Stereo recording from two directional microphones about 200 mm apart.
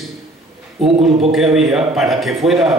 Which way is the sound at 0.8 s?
30° right (ahead or behind).